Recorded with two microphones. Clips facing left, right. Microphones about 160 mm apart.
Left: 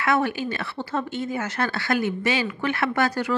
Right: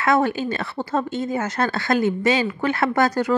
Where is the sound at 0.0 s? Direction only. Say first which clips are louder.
Right 4 dB; 40° right (ahead or behind).